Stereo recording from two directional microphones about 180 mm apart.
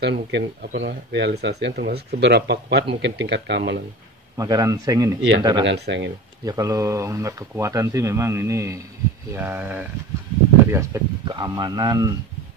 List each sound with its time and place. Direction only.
0.0 s speech: 65° right (ahead or behind)
4.4 s speech: 20° right (ahead or behind)
5.7 s speech: 75° right (ahead or behind)
6.4 s speech: 20° right (ahead or behind)